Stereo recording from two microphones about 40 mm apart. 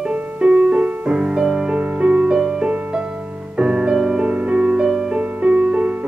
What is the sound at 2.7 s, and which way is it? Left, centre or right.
Music, right.